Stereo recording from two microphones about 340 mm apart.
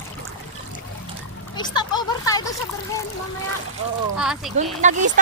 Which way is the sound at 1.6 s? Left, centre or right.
Centre.